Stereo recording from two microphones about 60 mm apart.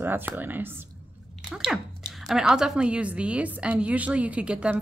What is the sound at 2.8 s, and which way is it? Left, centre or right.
A woman's voice, centre.